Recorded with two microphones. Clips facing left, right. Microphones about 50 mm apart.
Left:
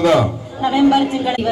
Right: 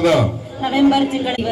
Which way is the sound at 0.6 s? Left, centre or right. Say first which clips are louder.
Left 1 dB; centre.